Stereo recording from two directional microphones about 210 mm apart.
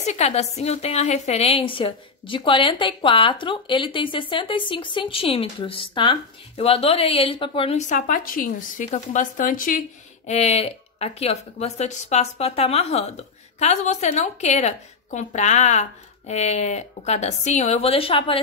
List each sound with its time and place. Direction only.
0.0 s a woman's voice: 30° left (ahead or behind)